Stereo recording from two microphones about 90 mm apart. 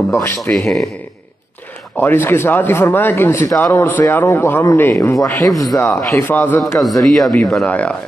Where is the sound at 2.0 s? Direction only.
25° left (ahead or behind).